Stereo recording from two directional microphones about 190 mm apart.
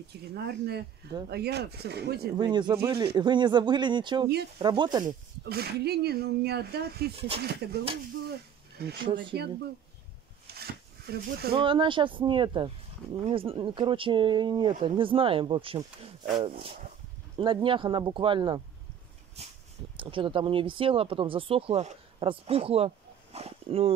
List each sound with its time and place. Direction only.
0.3 s speech: 60° right (ahead or behind)
2.3 s speech: 25° right (ahead or behind)
5.0 s speech: 55° right (ahead or behind)
8.3 s snake: 60° right (ahead or behind)
9.0 s speech: 25° right (ahead or behind)
10.4 s a sound: 55° right (ahead or behind)
11.5 s speech: 25° right (ahead or behind)
17.4 s speech: 25° right (ahead or behind)